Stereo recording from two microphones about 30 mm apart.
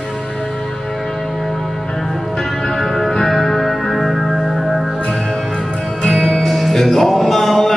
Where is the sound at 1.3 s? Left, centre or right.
Centre.